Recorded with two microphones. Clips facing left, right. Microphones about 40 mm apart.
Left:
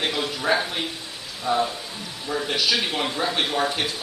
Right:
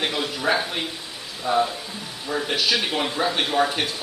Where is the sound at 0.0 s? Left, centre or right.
Centre.